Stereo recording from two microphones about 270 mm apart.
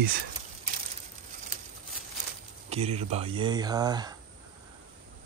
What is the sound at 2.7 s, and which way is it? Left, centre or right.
Speech, right.